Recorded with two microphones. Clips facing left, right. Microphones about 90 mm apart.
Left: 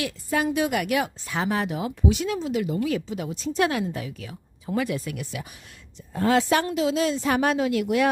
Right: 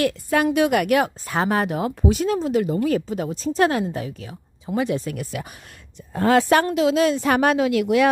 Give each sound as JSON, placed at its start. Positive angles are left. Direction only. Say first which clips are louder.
{"t": 0.0, "sound": "speech", "louder": "right 6 dB", "side_deg": -65}
{"t": 5.1, "sound": "a woman's voice", "louder": "right 4 dB", "side_deg": -45}